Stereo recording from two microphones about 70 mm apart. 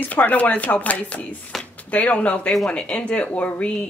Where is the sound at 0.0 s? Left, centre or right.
Left.